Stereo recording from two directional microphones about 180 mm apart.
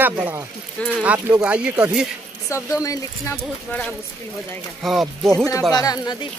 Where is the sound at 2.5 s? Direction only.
20° left (ahead or behind).